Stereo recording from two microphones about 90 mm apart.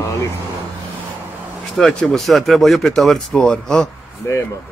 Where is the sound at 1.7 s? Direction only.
5° left (ahead or behind).